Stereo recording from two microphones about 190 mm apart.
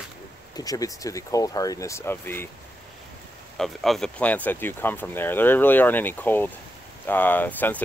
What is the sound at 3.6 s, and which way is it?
Speech, centre (ahead or behind).